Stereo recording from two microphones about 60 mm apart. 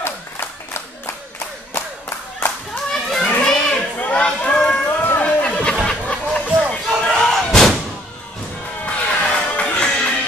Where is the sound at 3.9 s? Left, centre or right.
Left.